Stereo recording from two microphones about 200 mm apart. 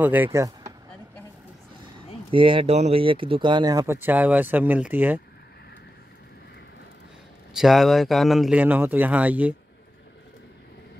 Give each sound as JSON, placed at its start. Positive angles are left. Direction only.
{"t": 0.0, "sound": "speech", "side_deg": -10}
{"t": 2.3, "sound": "speech", "side_deg": -25}
{"t": 7.5, "sound": "speech", "side_deg": 0}